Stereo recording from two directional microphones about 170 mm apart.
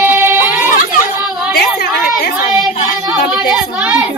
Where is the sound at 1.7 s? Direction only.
70° left (ahead or behind).